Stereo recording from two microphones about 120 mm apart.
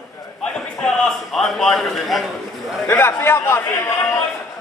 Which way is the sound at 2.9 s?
20° left (ahead or behind).